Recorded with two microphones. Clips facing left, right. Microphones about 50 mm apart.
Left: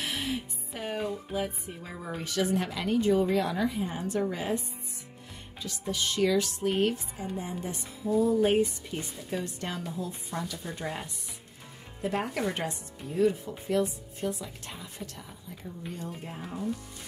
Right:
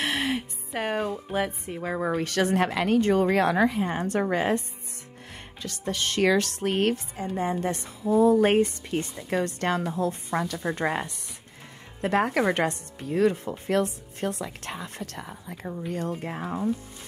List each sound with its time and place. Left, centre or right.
0.0 s speech: right
16.2 s speech: right
16.4 s speech: right